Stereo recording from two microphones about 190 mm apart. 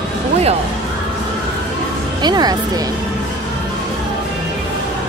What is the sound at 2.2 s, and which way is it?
Speech, 20° right (ahead or behind).